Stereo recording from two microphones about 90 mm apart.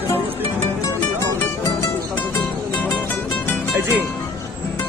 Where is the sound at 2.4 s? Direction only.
20° left (ahead or behind).